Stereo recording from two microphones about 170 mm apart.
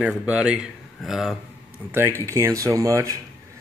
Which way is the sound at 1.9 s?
15° right (ahead or behind).